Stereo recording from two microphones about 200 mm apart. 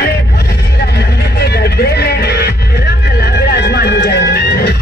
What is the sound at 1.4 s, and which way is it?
Music, 55° left (ahead or behind).